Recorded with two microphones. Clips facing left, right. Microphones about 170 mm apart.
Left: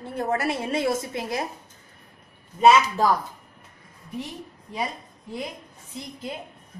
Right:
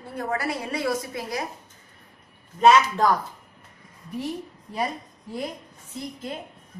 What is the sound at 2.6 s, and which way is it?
Speech, 10° left (ahead or behind).